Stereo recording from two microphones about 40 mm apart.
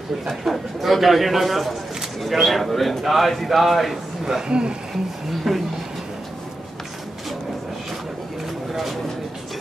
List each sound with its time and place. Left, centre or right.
0.3 s a man's voice: centre
4.5 s speech: right
5.5 s a sound: centre